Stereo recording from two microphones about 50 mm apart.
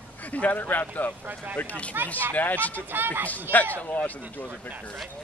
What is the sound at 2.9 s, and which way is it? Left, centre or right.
Speech, right.